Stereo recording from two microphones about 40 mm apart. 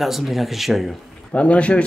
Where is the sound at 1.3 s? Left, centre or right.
Left.